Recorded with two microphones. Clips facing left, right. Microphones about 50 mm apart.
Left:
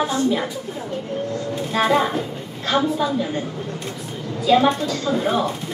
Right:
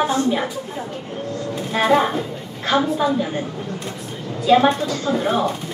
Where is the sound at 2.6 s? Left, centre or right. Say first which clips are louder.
Right 1 dB; right.